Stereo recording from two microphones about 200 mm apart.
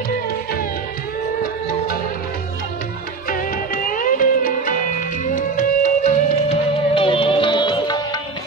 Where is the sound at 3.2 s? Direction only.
45° left (ahead or behind); by 8.1 s 20° left (ahead or behind).